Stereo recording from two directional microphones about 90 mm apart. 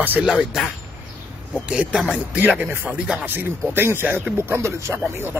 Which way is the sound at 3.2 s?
25° right (ahead or behind).